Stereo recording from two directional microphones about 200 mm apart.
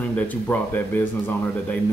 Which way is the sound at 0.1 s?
5° left (ahead or behind).